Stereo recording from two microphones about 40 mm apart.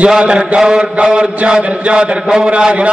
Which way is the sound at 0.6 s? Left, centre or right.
Centre.